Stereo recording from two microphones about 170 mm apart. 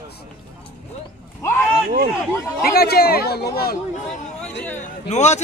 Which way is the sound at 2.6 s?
65° left (ahead or behind).